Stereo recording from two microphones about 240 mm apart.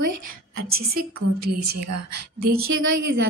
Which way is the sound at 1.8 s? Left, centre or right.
Right.